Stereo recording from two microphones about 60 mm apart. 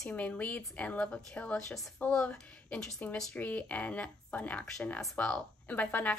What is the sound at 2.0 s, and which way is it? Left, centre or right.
Speech, left.